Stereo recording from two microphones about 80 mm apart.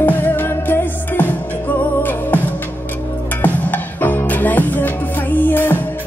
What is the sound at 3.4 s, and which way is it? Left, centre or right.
Music, left.